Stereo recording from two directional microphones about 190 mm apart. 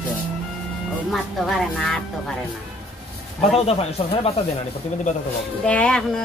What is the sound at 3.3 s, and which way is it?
Speech, 30° left (ahead or behind).